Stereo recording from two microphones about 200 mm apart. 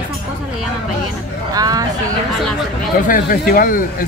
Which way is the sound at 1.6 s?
20° right (ahead or behind).